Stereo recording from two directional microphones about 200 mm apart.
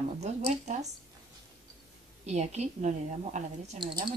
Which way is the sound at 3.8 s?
20° right (ahead or behind).